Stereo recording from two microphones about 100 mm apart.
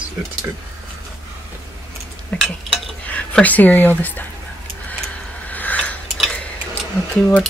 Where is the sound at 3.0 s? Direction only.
15° left (ahead or behind).